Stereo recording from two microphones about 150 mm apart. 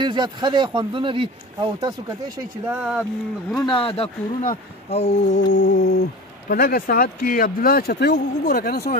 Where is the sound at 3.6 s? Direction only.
35° left (ahead or behind).